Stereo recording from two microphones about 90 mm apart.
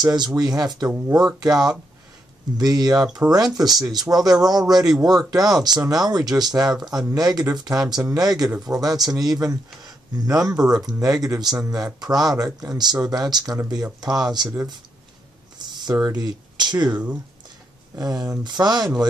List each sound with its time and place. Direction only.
0.0 s speech: 50° right (ahead or behind)
15.8 s speech: 45° right (ahead or behind)